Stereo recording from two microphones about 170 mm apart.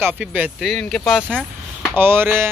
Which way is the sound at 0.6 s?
5° left (ahead or behind).